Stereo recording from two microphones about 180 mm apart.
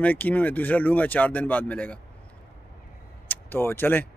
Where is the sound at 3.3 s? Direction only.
10° left (ahead or behind).